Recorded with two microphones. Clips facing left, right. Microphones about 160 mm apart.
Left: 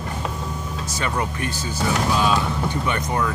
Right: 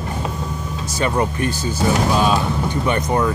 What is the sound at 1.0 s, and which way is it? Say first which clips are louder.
Speech: right 6 dB; 35° right (ahead or behind).